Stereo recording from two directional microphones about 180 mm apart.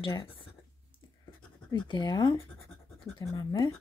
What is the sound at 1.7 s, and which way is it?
Speech, 20° left (ahead or behind).